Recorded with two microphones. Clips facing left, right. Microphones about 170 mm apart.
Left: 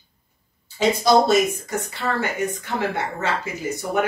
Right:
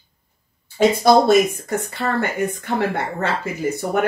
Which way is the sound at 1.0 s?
55° right (ahead or behind).